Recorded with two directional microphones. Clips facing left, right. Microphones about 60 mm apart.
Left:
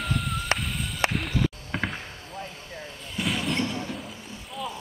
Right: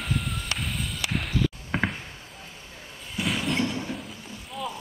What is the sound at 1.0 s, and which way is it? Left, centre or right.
Music, left.